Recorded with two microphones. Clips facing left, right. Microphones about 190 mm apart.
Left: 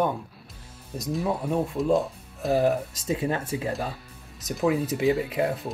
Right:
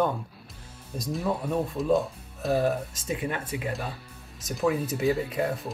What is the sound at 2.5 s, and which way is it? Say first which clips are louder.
Speech: left 3 dB; 20° left (ahead or behind).